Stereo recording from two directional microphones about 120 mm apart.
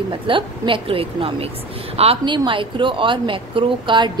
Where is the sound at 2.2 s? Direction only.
40° right (ahead or behind).